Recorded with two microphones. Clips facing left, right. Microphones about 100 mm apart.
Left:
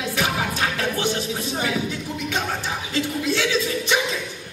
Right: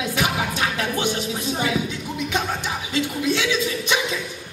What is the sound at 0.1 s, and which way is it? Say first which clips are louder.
Music: left 2 dB; 20° right (ahead or behind).